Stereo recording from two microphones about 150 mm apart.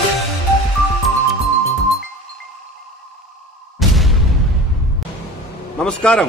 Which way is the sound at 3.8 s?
Centre (ahead or behind).